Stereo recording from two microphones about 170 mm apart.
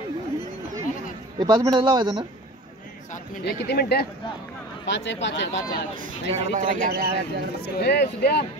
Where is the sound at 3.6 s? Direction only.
70° left (ahead or behind).